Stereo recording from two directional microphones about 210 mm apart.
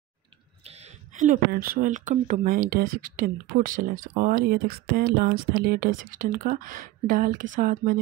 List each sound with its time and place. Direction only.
0.7 s speech: 30° right (ahead or behind)